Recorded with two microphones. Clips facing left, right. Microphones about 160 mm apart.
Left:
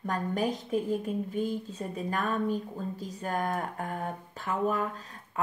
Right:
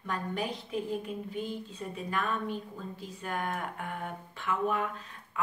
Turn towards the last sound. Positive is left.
turn(degrees=40)  # may be behind; listen again after turning